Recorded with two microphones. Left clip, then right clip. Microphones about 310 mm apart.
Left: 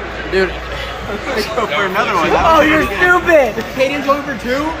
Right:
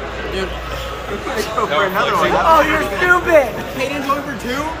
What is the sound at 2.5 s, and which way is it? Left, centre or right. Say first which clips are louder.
Speech: left 2 dB; left.